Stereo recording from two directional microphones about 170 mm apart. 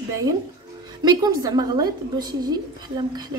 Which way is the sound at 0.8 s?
25° right (ahead or behind).